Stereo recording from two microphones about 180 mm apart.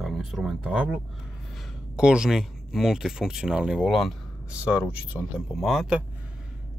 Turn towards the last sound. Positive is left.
turn(degrees=0)  # may be behind; listen again after turning